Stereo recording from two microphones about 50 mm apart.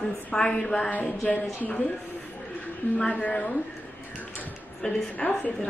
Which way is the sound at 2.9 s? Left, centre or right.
Left.